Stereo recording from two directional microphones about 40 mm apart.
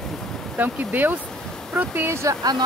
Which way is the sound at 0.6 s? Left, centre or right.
Right.